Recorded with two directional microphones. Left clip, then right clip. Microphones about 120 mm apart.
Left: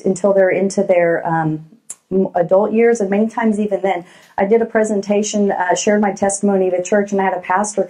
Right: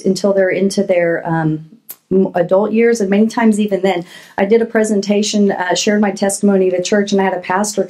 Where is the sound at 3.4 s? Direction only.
40° right (ahead or behind).